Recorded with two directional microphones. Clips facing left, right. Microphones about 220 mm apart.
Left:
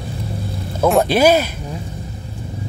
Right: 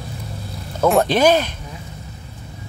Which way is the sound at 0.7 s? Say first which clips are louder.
Left 1 dB; 5° left (ahead or behind).